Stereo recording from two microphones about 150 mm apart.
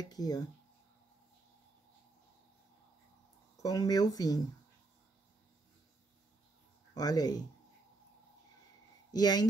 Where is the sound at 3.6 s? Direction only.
25° left (ahead or behind).